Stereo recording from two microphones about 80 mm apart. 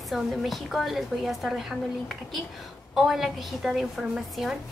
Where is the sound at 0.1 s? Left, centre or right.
Centre.